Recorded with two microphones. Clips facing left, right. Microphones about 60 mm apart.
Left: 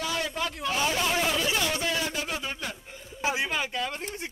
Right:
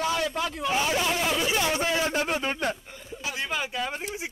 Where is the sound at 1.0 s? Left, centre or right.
Centre.